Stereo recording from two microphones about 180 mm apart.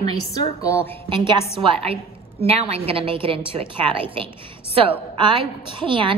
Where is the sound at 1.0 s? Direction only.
25° right (ahead or behind).